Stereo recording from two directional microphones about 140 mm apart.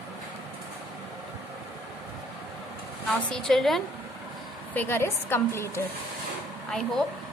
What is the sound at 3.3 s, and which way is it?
Speech, 5° left (ahead or behind).